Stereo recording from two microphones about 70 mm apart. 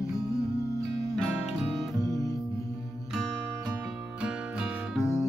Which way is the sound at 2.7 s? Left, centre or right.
Centre.